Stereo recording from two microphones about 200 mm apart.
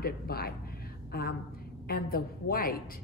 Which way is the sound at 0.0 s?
50° left (ahead or behind).